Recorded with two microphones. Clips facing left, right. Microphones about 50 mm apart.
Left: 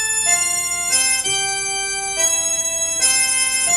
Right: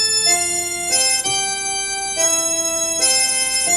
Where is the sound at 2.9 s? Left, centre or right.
Centre.